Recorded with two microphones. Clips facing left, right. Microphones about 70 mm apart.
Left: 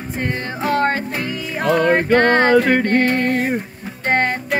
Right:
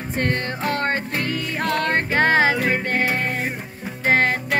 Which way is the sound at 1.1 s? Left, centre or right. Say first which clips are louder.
Even; centre.